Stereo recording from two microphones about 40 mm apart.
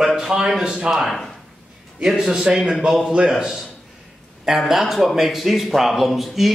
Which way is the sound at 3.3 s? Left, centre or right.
Centre.